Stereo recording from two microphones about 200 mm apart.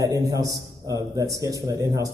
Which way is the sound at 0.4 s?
15° right (ahead or behind).